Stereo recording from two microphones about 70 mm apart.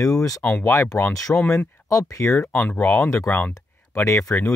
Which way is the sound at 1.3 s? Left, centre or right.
Left.